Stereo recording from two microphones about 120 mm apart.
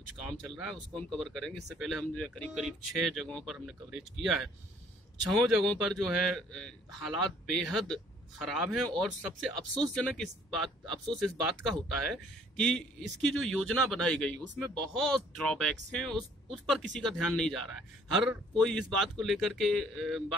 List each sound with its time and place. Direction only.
0.9 s speech: centre (ahead or behind)